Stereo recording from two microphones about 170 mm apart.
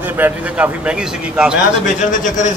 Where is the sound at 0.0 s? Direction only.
10° right (ahead or behind).